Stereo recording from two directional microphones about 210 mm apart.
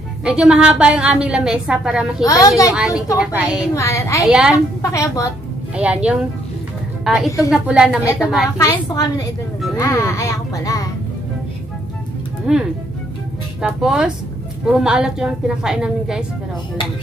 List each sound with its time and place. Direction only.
0.2 s a woman's voice: 5° right (ahead or behind)
2.2 s speech: 15° left (ahead or behind)
2.7 s a woman's voice: 5° right (ahead or behind)
3.7 s speech: 15° left (ahead or behind)
4.3 s a woman's voice: 5° right (ahead or behind)
4.9 s speech: 15° left (ahead or behind)
7.1 s a woman's voice: centre (ahead or behind)
8.5 s speech: 15° left (ahead or behind)
12.5 s a woman's voice: 5° right (ahead or behind)